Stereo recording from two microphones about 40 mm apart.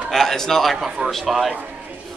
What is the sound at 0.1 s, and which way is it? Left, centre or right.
Speech, centre.